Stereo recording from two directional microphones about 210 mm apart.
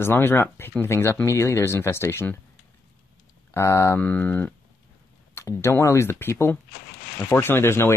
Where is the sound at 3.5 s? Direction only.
15° left (ahead or behind).